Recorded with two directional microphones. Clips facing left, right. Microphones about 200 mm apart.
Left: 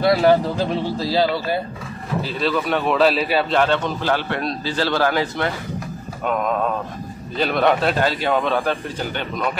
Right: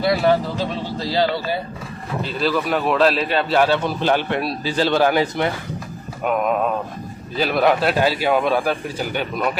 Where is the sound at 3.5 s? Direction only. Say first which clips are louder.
Right 4 dB; 10° right (ahead or behind).